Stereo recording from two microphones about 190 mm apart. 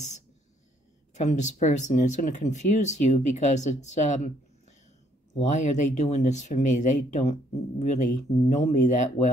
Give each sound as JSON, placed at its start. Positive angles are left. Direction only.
{"t": 1.1, "sound": "speech", "side_deg": 40}